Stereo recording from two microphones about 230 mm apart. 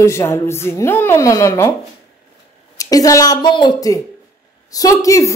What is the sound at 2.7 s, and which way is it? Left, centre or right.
Speech, centre.